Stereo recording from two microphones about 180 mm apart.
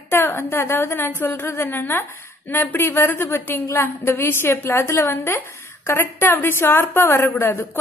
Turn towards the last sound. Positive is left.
turn(degrees=15)  # may be behind; listen again after turning